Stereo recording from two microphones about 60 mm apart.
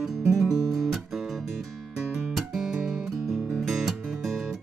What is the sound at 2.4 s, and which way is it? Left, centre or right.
Music, centre.